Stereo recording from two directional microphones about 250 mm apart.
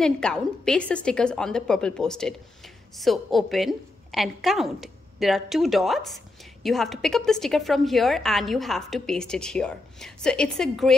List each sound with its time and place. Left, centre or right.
0.0 s a woman's voice: centre